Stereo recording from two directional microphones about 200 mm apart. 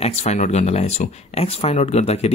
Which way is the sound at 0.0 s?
35° left (ahead or behind).